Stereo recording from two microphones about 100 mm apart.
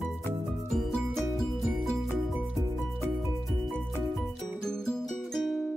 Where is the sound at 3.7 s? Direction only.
5° left (ahead or behind).